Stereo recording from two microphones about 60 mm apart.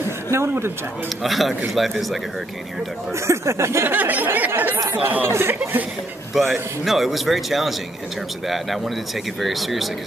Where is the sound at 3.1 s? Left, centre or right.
Right.